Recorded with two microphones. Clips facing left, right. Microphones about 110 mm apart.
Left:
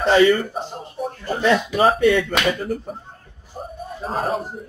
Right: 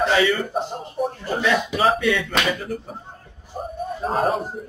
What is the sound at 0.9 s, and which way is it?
Speech, 5° right (ahead or behind).